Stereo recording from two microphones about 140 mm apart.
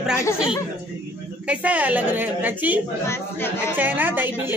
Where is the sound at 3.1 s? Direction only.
20° left (ahead or behind).